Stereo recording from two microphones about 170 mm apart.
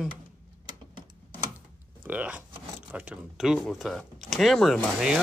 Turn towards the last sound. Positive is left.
turn(degrees=-5)  # may be behind; listen again after turning